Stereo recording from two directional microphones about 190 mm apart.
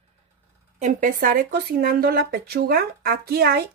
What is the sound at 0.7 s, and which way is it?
Speech, 40° right (ahead or behind).